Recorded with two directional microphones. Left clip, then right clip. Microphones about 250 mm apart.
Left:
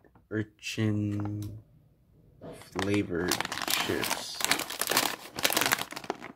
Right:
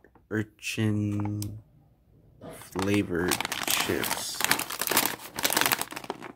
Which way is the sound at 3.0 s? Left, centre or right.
Centre.